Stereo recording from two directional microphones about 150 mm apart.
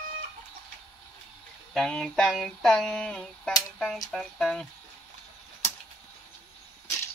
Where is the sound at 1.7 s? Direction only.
5° left (ahead or behind).